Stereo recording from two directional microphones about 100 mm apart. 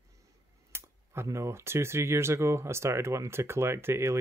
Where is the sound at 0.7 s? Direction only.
25° right (ahead or behind).